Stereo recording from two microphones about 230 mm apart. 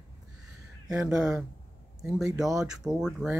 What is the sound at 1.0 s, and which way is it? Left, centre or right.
Speech, centre.